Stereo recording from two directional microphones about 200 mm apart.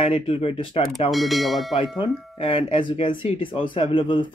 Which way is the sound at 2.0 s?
25° left (ahead or behind).